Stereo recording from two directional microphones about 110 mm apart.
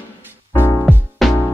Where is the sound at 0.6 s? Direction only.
20° left (ahead or behind).